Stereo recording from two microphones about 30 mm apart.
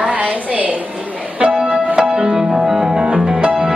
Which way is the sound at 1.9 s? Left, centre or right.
Right.